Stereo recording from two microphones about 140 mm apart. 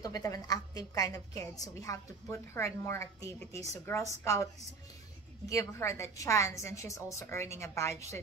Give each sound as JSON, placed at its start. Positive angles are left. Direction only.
{"t": 0.0, "sound": "a woman's voice", "side_deg": 25}
{"t": 5.5, "sound": "a woman's voice", "side_deg": 20}